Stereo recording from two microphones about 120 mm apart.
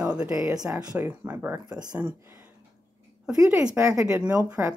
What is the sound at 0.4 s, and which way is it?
Speech, 30° right (ahead or behind).